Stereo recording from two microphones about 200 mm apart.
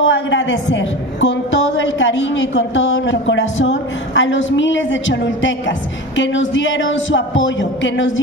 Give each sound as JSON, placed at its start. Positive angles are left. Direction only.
{"t": 0.0, "sound": "a woman's voice", "side_deg": 65}